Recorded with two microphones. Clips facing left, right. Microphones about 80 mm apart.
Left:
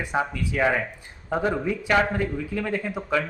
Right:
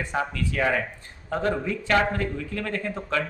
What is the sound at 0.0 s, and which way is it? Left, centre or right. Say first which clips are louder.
A man's voice: left 1 dB; centre.